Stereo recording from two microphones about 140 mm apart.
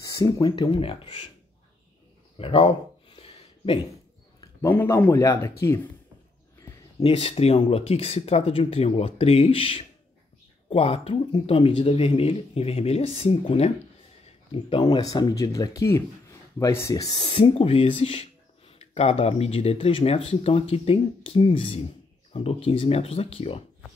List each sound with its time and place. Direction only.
0.0 s speech: 25° left (ahead or behind)
2.3 s speech: 45° left (ahead or behind)
3.2 s a sound: 40° left (ahead or behind)
4.4 s a man's voice: 20° left (ahead or behind)
7.0 s speech: 40° left (ahead or behind)
15.0 s speech: 25° left (ahead or behind)
17.2 s speech: 40° left (ahead or behind)